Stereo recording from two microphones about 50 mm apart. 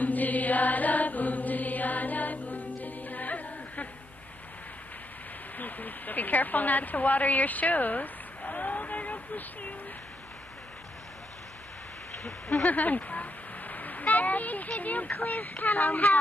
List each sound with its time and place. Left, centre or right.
0.0 s mantra: left
5.6 s a woman's voice: left
12.2 s speech: left